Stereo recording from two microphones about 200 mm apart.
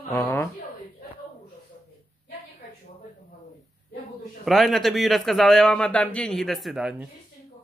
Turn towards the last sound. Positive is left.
turn(degrees=0)  # may be behind; listen again after turning